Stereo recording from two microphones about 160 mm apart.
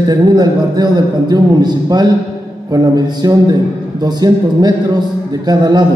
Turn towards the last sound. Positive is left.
turn(degrees=-25)  # may be behind; listen again after turning